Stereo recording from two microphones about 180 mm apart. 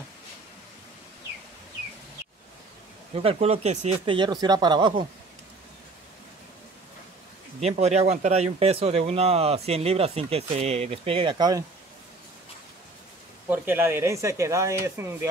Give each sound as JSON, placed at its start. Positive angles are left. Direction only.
{"t": 3.2, "sound": "speech", "side_deg": -35}
{"t": 7.6, "sound": "speech", "side_deg": -35}
{"t": 13.5, "sound": "speech", "side_deg": -10}